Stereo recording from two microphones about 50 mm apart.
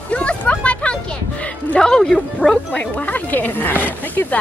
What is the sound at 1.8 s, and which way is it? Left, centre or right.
Speech, centre.